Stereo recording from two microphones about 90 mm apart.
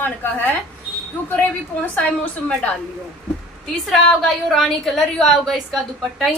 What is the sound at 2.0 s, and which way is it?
Speech, 15° left (ahead or behind).